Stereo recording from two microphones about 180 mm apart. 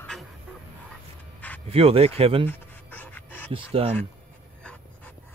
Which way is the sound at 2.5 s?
10° left (ahead or behind).